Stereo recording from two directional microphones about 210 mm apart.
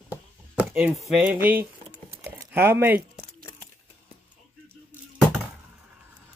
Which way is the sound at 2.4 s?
10° right (ahead or behind).